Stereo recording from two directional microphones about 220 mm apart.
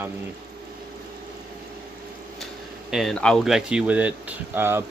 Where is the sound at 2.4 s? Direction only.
Centre (ahead or behind).